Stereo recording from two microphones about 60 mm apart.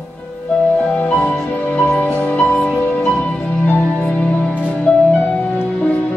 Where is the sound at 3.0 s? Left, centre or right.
Centre.